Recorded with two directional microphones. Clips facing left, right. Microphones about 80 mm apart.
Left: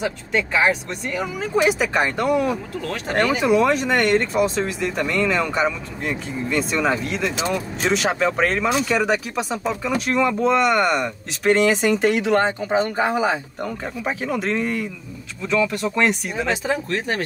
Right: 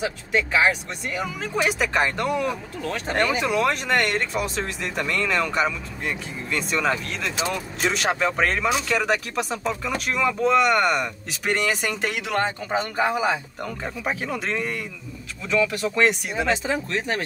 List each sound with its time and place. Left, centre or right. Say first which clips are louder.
0.0 s speech: left 1 dB; centre
12.1 s speech: left 6 dB; left
14.0 s speech: left 4 dB; centre